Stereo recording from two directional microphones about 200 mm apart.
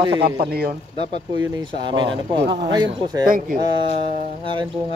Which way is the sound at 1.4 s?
20° right (ahead or behind).